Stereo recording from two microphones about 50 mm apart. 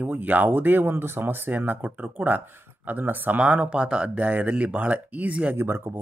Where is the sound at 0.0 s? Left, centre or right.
Right.